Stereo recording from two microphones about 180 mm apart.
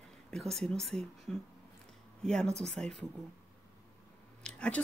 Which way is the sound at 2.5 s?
5° left (ahead or behind).